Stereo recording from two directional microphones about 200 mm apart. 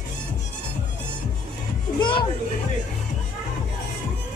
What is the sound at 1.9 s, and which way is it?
Speech, 25° left (ahead or behind).